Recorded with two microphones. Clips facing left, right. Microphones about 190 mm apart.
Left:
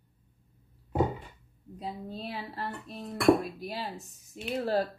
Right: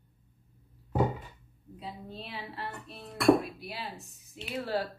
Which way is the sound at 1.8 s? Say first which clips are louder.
Left 5 dB; 40° left (ahead or behind).